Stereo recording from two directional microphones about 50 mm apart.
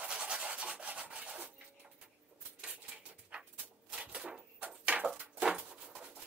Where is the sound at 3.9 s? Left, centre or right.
Centre.